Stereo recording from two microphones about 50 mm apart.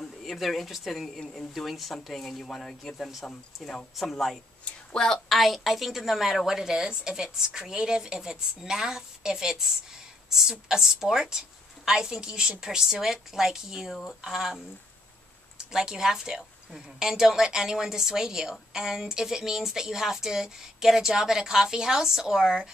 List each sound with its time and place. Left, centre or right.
0.0 s speech: centre
1.2 s speech: centre
1.5 s speech: centre
3.9 s speech: centre
4.6 s speech: centre
5.3 s a woman's voice: centre
15.5 s a woman's voice: centre